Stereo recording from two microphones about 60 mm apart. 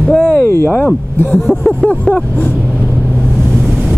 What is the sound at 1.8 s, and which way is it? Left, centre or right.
Vehicle, left.